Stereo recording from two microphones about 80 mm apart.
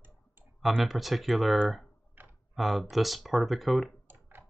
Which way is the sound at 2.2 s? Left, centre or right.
Right.